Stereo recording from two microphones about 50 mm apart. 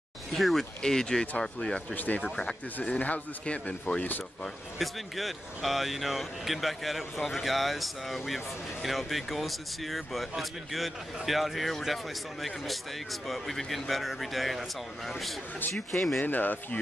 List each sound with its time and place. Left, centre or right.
0.3 s speech: centre
2.0 s speech: left
2.3 s speech: left
4.7 s speech: centre
16.2 s speech: left